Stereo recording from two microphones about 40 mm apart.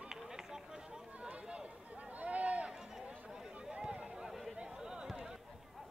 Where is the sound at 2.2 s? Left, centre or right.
Right.